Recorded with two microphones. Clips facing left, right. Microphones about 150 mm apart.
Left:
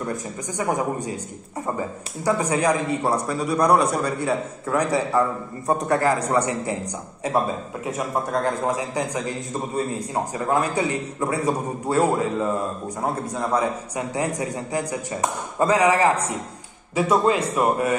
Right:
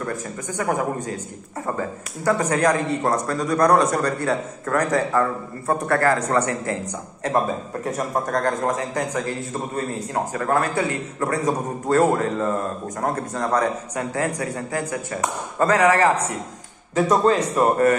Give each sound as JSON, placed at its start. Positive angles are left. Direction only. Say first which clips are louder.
{"t": 0.0, "sound": "a man's voice", "louder": "even", "side_deg": 15}
{"t": 8.3, "sound": "a man's voice", "louder": "right 1 dB", "side_deg": 10}